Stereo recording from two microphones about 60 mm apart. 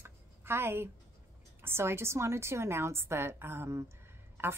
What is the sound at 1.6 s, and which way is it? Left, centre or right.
A woman's voice, right.